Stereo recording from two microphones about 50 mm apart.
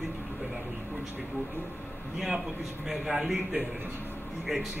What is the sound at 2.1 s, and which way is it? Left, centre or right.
Speech, centre.